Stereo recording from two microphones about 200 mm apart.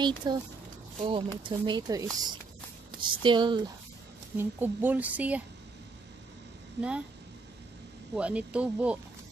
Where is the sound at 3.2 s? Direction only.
25° right (ahead or behind).